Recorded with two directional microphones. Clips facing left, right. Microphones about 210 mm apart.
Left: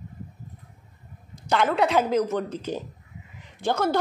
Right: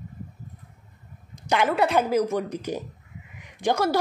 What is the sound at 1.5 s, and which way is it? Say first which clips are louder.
A woman's voice: even; 10° right (ahead or behind).